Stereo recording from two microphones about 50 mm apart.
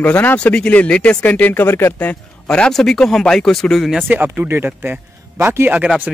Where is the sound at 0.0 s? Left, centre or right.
Left.